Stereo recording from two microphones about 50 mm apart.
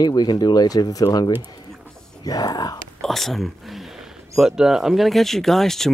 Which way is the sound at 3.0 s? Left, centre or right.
Centre.